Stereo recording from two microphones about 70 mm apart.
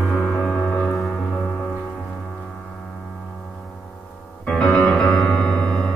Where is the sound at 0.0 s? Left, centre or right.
Centre.